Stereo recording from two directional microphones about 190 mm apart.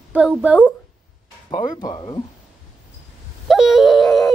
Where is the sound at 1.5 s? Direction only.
20° left (ahead or behind).